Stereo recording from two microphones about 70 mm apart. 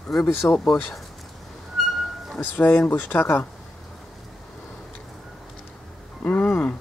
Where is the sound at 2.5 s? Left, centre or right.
Left.